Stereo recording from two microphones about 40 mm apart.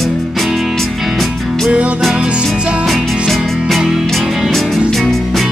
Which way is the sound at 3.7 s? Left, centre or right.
Centre.